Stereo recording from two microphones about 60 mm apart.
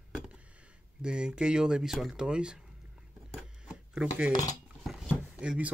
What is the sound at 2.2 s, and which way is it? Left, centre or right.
Speech, centre.